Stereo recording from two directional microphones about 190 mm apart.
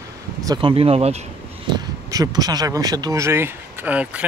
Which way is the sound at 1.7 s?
20° right (ahead or behind).